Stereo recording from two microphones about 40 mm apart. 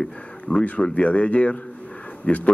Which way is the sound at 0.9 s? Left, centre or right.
Left.